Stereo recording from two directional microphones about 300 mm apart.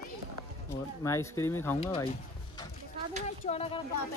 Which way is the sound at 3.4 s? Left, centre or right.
Centre.